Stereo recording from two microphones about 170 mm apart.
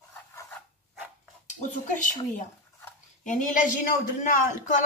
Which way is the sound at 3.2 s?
50° left (ahead or behind).